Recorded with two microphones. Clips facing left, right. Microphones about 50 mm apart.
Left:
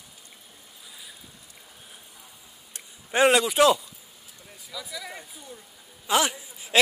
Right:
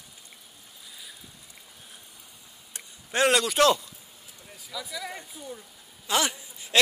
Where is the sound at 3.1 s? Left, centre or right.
Centre.